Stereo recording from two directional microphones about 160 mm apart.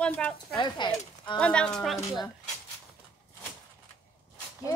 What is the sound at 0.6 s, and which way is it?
Speech, 30° left (ahead or behind).